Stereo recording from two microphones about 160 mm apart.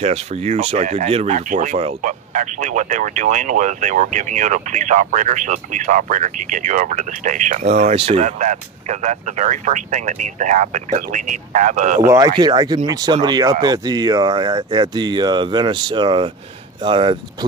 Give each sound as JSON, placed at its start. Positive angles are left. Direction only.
{"t": 0.0, "sound": "speech", "side_deg": -40}
{"t": 12.1, "sound": "speech", "side_deg": -25}